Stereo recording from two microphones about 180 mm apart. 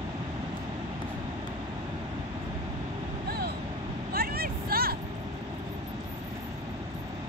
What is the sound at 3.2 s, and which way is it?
Vehicle, 60° right (ahead or behind).